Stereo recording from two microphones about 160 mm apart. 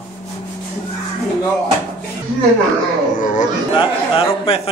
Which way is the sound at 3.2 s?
55° left (ahead or behind).